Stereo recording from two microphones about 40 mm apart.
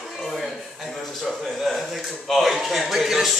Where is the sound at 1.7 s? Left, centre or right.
Centre.